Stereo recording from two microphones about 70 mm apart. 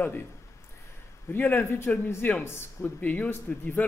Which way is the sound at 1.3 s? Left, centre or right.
Left.